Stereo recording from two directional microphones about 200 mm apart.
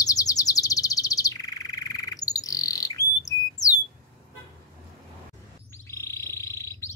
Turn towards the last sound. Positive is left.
turn(degrees=15)  # may be behind; listen again after turning